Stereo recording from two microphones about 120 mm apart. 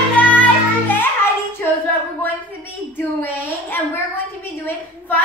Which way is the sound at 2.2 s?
15° left (ahead or behind).